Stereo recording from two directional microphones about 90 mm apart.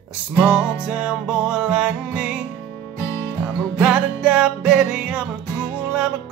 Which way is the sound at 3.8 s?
10° right (ahead or behind).